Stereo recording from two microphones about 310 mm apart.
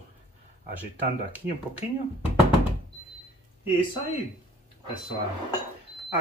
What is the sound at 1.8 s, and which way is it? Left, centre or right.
Speech, centre.